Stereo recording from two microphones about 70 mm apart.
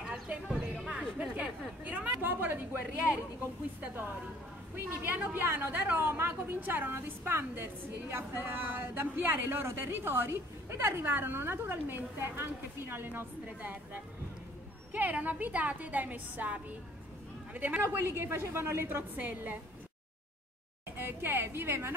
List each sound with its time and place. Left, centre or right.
0.0 s a sound: centre
0.9 s a woman's voice: centre
4.8 s a woman's voice: right
14.9 s a woman's voice: right
17.6 s a woman's voice: right
17.8 s a woman's voice: right
19.1 s a woman's voice: right
21.0 s a woman's voice: right